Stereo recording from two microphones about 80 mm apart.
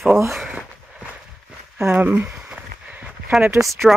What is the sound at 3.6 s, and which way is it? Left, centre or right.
Speech, centre.